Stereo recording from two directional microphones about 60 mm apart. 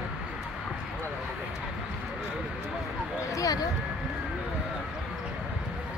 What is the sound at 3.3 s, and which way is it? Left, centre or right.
Speech, left.